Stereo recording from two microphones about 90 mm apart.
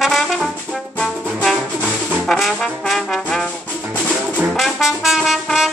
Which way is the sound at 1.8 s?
20° right (ahead or behind).